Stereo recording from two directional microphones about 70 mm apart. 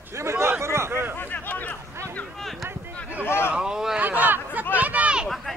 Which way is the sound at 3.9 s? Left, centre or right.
Right.